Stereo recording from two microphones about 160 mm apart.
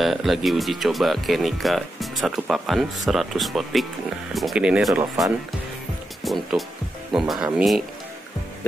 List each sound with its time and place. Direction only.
0.0 s speech: centre (ahead or behind)
6.2 s music: centre (ahead or behind)
7.1 s speech: centre (ahead or behind)